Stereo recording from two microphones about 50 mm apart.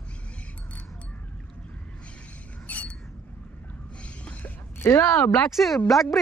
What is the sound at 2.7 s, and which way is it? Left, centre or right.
Mechanisms, left.